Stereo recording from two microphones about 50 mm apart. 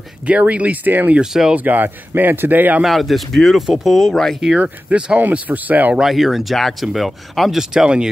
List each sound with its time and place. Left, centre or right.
0.3 s speech: right
1.2 s speech: centre
1.5 s speech: right
2.8 s speech: centre
4.1 s speech: centre
4.6 s speech: right
6.0 s speech: centre
7.7 s speech: centre